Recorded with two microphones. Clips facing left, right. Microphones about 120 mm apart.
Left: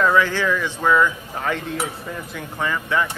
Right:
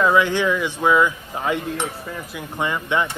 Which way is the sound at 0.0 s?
15° right (ahead or behind).